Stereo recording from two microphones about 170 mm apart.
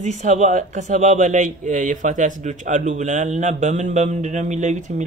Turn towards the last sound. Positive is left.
turn(degrees=-45)  # may be behind; listen again after turning